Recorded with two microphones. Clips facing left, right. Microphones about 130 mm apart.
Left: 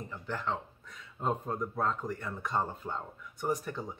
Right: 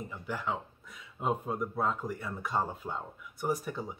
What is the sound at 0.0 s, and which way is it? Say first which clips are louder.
Speech: even; 10° right (ahead or behind).